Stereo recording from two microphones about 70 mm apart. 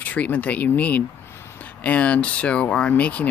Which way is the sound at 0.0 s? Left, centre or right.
Left.